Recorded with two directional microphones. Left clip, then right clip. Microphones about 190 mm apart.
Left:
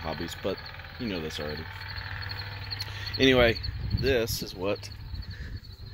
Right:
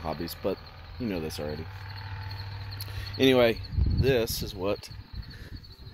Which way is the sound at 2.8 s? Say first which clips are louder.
Even; 15° right (ahead or behind).